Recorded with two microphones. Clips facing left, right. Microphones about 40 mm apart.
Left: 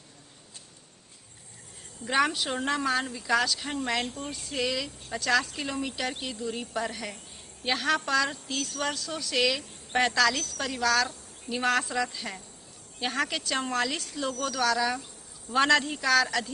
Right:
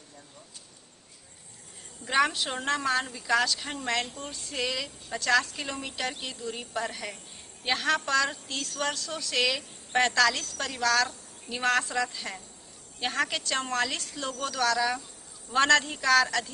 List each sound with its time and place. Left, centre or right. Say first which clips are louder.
2.0 s speech: even; centre